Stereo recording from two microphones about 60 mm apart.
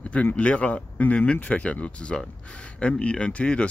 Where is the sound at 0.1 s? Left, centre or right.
Left.